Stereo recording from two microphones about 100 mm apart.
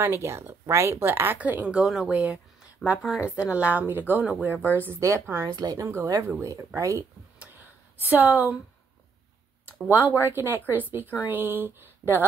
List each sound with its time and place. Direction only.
0.0 s speech: 25° right (ahead or behind)
1.8 s a woman's voice: 5° right (ahead or behind); by 5.5 s 25° right (ahead or behind)
5.6 s speech: 40° right (ahead or behind)
8.1 s a woman's voice: 20° right (ahead or behind)
10.2 s speech: 20° right (ahead or behind)